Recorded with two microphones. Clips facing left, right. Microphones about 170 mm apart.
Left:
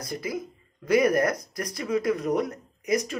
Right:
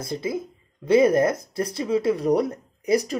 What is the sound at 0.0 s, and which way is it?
Speech, 25° right (ahead or behind).